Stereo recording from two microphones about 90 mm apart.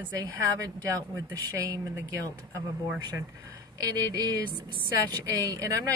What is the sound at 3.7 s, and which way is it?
A woman's voice, 40° right (ahead or behind).